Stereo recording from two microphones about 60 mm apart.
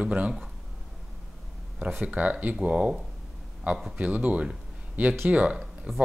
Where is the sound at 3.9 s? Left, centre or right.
Right.